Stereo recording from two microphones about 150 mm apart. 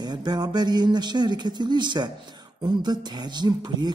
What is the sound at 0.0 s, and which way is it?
Speech, 25° right (ahead or behind).